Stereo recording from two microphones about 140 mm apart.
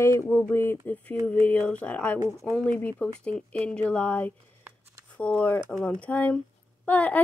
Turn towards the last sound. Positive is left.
turn(degrees=10)  # may be behind; listen again after turning